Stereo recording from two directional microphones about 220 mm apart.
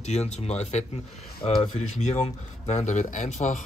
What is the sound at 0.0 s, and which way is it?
Speech, 30° left (ahead or behind).